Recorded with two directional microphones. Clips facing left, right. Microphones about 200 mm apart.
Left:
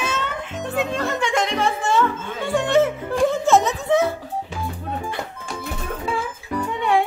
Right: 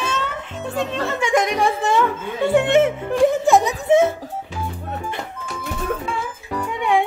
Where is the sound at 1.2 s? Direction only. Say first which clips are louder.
Right 6 dB; 15° right (ahead or behind).